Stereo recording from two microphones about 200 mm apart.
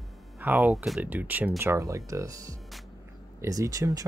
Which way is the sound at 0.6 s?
Centre (ahead or behind).